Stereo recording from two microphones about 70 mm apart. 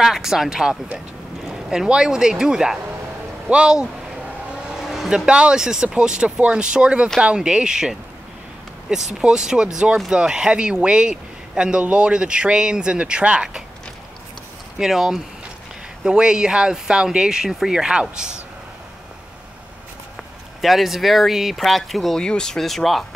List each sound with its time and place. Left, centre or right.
0.0 s speech: centre
14.8 s speech: centre
20.6 s speech: centre